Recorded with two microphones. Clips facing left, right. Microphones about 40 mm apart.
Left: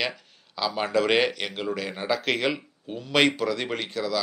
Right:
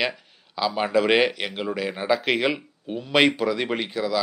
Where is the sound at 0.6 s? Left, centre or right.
Centre.